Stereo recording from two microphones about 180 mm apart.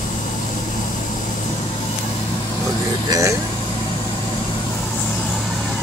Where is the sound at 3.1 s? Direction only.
15° right (ahead or behind).